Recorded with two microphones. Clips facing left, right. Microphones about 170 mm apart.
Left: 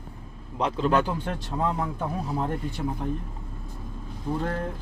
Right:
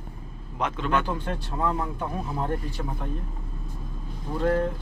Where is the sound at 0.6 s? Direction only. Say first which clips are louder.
Left 3 dB; 35° left (ahead or behind).